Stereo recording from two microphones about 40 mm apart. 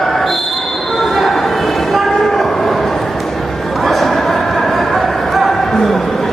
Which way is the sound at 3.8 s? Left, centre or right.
Centre.